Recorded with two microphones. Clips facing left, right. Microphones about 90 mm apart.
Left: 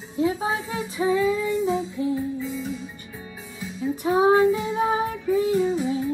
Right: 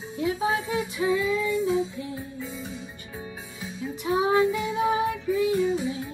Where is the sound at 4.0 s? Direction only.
35° left (ahead or behind).